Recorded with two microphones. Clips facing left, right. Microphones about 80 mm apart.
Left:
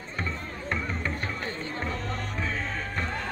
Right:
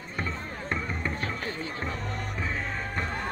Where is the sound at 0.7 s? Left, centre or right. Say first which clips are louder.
Left 1 dB; centre.